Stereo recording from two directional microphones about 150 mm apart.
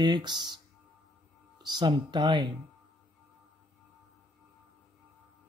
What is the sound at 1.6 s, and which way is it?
Speech, 30° right (ahead or behind).